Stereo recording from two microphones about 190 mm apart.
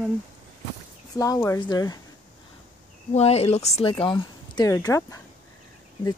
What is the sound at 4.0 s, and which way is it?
Speech, 25° left (ahead or behind).